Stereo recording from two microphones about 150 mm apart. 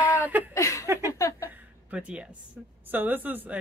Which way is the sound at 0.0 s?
10° right (ahead or behind).